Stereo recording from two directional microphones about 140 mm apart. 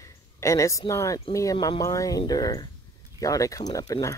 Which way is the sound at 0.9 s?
20° left (ahead or behind).